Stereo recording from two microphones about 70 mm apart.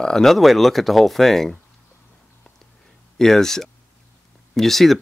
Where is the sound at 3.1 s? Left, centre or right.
Centre.